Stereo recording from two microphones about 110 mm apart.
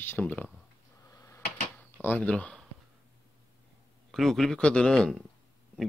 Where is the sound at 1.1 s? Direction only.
30° left (ahead or behind).